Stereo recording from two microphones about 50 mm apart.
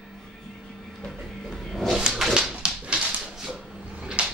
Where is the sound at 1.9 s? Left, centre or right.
Centre.